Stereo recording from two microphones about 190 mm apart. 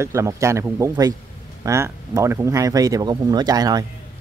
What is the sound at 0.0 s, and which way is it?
Speech, 15° right (ahead or behind).